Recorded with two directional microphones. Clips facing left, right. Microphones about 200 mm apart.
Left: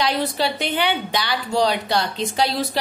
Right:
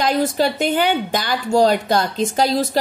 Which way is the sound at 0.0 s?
45° right (ahead or behind).